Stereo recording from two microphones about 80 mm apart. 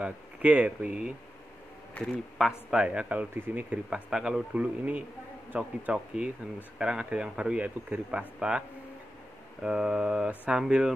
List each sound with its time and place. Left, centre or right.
0.0 s speech: centre
2.0 s speech: centre
2.4 s speech: centre